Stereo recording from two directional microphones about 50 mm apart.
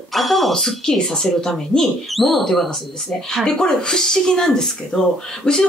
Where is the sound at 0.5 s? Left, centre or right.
Centre.